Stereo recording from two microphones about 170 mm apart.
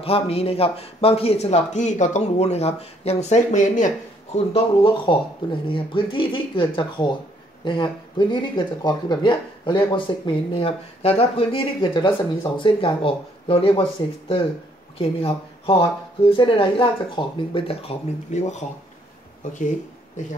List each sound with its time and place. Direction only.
0.0 s a man's voice: 35° left (ahead or behind)
15.0 s a man's voice: 35° left (ahead or behind)